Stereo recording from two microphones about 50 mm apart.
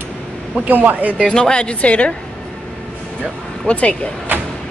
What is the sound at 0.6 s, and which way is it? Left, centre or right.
Speech, right.